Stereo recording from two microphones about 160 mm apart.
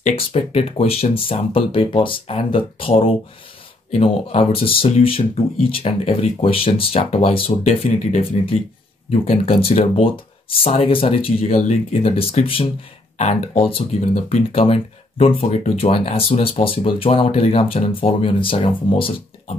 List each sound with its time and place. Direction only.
0.0 s speech: 35° left (ahead or behind)
14.0 s speech: 50° left (ahead or behind); by 19.2 s 35° left (ahead or behind)